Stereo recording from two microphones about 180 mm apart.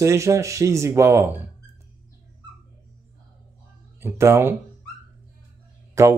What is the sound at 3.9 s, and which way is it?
Speech, 15° right (ahead or behind).